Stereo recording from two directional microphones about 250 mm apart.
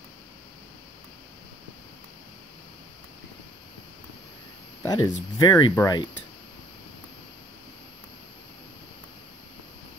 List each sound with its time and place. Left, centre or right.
4.8 s speech: centre